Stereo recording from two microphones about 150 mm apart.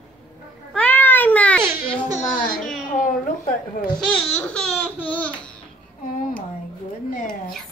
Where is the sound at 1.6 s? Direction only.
15° right (ahead or behind).